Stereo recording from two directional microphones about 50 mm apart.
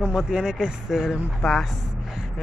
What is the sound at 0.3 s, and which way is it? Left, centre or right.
Speech, centre.